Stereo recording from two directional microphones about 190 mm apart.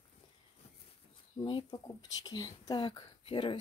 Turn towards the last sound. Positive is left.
turn(degrees=25)  # may be behind; listen again after turning